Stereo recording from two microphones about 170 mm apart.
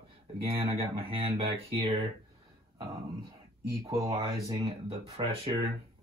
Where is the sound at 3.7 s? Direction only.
20° right (ahead or behind).